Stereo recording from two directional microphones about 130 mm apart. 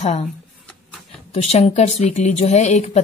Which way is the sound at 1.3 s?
50° left (ahead or behind).